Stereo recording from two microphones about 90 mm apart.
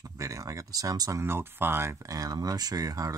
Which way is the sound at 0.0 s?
40° right (ahead or behind).